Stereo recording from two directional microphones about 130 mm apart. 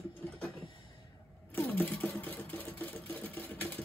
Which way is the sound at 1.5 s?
15° left (ahead or behind).